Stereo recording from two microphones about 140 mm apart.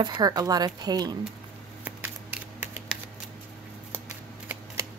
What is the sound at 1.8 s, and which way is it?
Scissors, 10° right (ahead or behind).